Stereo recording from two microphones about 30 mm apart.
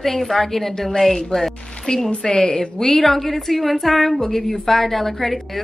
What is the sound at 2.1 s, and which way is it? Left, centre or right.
Speech, left.